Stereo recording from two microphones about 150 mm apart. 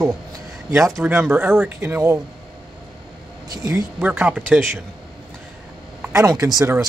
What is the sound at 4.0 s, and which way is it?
Speech, 10° right (ahead or behind).